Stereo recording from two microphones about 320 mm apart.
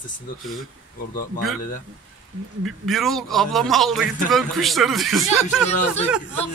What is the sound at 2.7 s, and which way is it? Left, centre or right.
A man's voice, centre.